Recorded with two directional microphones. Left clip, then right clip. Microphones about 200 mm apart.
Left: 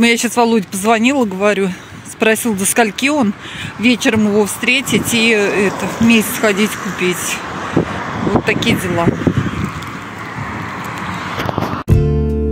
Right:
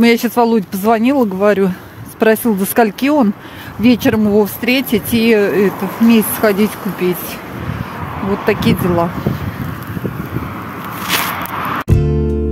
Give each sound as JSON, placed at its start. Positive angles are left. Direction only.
{"t": 0.0, "sound": "speech", "side_deg": -15}
{"t": 8.5, "sound": "speech", "side_deg": -20}